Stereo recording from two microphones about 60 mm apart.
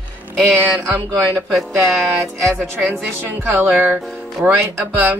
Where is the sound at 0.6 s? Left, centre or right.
Right.